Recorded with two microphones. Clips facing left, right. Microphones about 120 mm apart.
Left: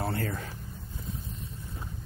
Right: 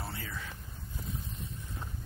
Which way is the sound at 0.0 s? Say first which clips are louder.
Left 10 dB; 60° left (ahead or behind).